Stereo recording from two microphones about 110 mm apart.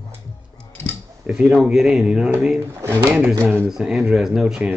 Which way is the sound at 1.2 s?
Centre (ahead or behind).